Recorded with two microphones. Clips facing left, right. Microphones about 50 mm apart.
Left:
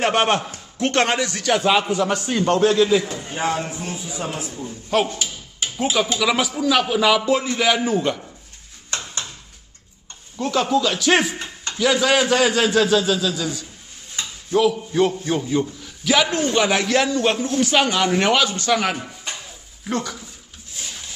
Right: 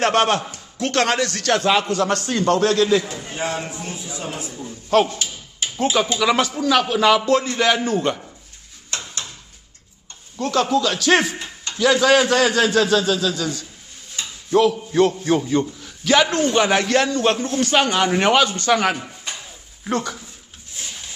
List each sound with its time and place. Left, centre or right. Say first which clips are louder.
0.0 s a man's voice: right 1 dB; centre
0.7 s speech: even; left
1.1 s a man's voice: right 1 dB; centre
4.0 s a man's voice: left 2 dB; centre
10.4 s a man's voice: right 1 dB; centre
10.9 s a man's voice: right 1 dB; centre
11.3 s a sound: left 1 dB; left
11.7 s a man's voice: right 3 dB; centre
13.3 s a man's voice: right 1 dB; centre
14.5 s a man's voice: right 2 dB; centre